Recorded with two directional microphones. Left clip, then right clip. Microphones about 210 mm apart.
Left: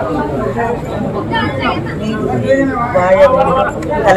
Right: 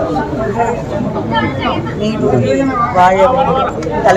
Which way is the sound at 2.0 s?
5° right (ahead or behind).